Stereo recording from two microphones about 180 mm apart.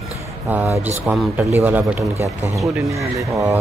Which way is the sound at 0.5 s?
10° right (ahead or behind).